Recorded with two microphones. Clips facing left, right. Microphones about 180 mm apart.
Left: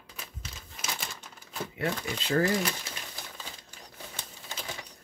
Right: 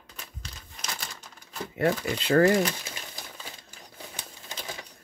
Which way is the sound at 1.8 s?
65° right (ahead or behind).